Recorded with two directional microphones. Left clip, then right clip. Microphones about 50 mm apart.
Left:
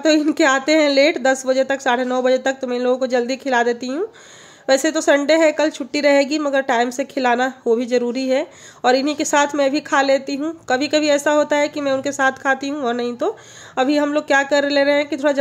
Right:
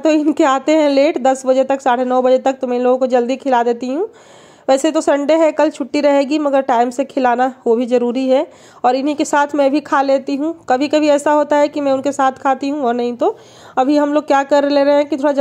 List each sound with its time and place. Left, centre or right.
0.0 s a woman's voice: centre
9.8 s speech: right
13.7 s a woman's voice: right
14.1 s speech: right